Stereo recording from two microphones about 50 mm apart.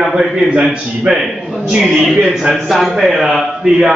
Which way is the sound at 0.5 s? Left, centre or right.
Centre.